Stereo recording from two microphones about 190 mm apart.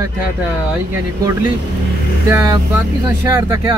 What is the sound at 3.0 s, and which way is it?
Speech, 15° right (ahead or behind).